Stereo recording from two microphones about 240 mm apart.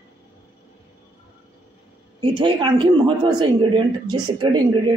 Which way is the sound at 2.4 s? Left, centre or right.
Centre.